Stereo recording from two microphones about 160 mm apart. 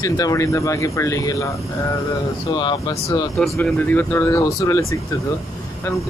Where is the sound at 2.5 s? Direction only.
30° left (ahead or behind).